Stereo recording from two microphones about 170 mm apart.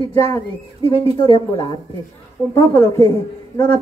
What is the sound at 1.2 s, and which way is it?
Speech, 30° left (ahead or behind).